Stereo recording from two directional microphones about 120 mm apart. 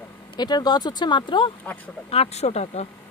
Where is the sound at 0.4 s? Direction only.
35° left (ahead or behind).